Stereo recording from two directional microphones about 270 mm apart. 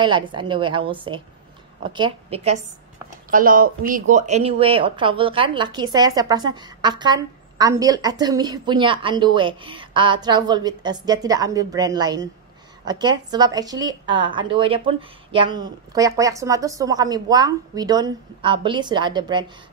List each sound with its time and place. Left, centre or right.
0.0 s a woman's voice: centre